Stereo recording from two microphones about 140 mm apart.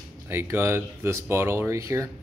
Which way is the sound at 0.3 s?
15° right (ahead or behind).